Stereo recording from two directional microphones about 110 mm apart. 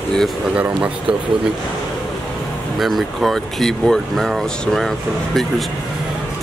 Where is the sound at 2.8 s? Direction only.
Centre (ahead or behind).